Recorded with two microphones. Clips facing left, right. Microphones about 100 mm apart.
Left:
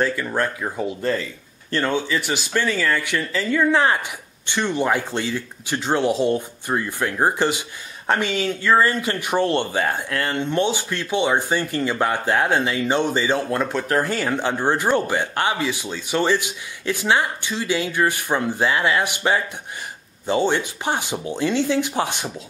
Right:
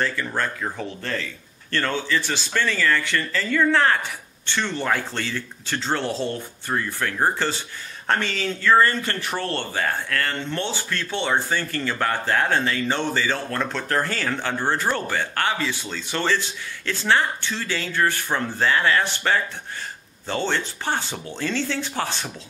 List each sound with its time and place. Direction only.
0.0 s speech: 10° left (ahead or behind)